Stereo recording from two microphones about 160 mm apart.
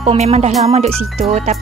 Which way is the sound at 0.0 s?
40° right (ahead or behind).